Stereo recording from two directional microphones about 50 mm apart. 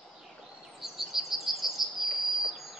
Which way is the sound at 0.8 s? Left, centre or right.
Centre.